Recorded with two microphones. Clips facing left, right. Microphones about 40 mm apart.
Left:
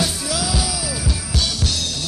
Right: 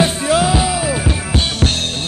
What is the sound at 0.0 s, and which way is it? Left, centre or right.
Music, right.